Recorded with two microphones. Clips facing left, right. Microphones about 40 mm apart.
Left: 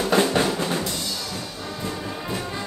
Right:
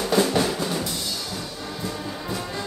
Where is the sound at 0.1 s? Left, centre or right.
Left.